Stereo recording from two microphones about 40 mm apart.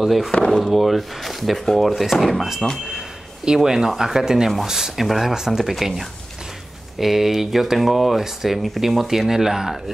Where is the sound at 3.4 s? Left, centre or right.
Centre.